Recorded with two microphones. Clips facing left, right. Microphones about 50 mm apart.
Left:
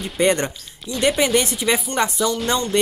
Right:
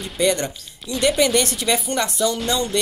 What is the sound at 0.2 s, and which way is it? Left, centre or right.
Speech, left.